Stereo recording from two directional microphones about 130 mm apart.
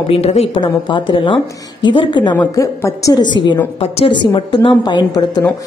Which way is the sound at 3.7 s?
50° left (ahead or behind).